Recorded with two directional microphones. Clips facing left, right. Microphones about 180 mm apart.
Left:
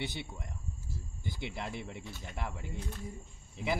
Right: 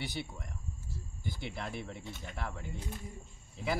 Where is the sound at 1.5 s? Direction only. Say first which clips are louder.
Even; 20° left (ahead or behind).